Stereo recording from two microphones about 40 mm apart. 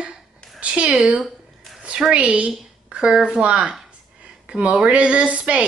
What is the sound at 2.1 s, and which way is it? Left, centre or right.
Speech, right.